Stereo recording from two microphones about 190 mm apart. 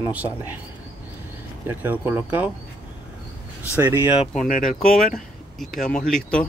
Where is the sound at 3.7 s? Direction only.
15° right (ahead or behind).